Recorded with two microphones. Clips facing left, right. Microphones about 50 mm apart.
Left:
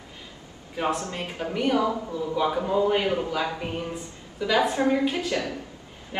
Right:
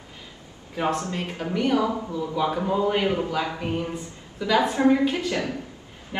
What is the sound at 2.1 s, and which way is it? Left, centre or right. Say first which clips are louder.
A man's voice: even; centre.